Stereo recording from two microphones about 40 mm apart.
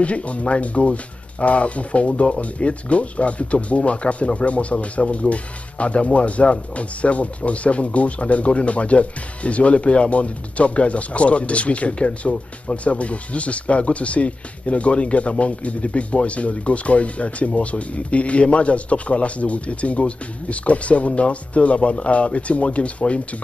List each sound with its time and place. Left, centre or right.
0.0 s speech: left